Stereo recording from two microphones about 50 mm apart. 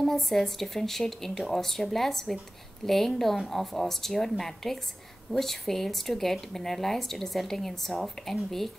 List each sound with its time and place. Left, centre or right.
0.0 s speech: centre